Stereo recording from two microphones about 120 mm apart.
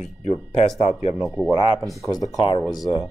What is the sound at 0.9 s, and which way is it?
Speech, 70° left (ahead or behind).